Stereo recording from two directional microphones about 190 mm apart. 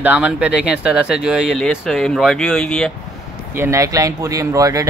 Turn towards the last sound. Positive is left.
turn(degrees=-15)  # may be behind; listen again after turning